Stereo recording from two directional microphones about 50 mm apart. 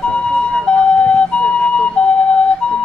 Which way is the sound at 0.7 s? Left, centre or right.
Left.